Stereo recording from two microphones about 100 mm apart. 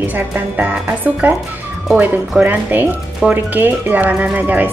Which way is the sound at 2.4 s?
20° right (ahead or behind).